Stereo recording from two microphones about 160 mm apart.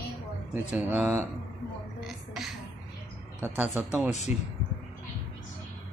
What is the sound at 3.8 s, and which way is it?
Speech, 10° right (ahead or behind).